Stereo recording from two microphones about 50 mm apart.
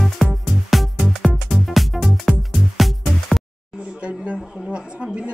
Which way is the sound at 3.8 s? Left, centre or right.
Right.